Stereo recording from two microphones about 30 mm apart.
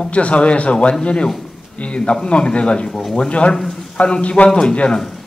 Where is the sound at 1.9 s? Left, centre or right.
Left.